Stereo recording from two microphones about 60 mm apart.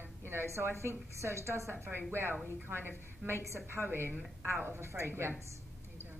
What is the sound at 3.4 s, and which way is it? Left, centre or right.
A woman's voice, right.